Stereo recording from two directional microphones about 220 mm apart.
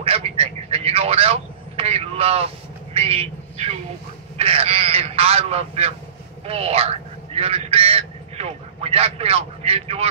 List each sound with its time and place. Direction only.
0.0 s vehicle: 25° right (ahead or behind)
4.4 s a man's voice: 25° right (ahead or behind)